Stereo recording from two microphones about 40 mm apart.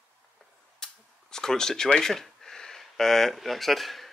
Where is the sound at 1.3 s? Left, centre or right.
Centre.